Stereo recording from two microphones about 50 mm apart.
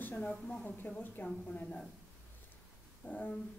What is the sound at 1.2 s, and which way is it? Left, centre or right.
Speech, left.